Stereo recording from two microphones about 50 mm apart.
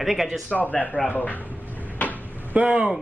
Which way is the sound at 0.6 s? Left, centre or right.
Left.